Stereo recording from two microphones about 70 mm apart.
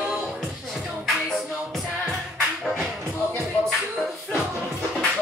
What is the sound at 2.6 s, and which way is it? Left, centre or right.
Music, centre.